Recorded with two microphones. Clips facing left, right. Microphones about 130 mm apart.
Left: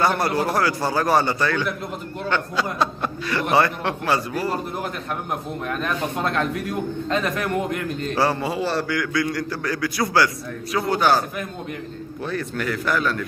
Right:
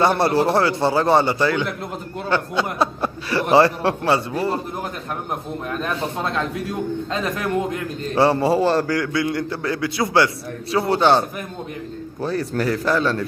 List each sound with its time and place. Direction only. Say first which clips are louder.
0.0 s a man's voice: right 4 dB; 30° right (ahead or behind)
8.1 s a man's voice: right 6 dB; 25° right (ahead or behind)